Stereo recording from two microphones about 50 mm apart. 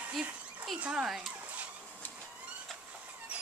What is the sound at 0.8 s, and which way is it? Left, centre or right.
Speech, centre.